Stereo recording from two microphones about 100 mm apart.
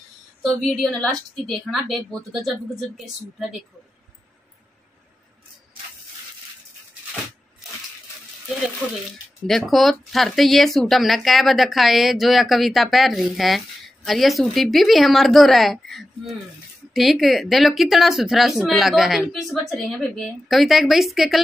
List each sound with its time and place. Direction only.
0.6 s speech: 10° left (ahead or behind)
9.5 s speech: centre (ahead or behind)